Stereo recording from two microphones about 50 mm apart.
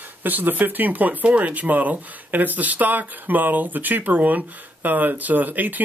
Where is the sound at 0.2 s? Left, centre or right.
Right.